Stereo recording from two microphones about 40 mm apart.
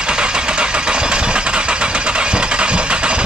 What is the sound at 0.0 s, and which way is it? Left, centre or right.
Engine, right.